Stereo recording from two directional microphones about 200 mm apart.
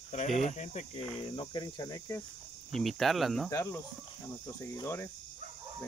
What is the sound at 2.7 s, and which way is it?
Speech, centre (ahead or behind).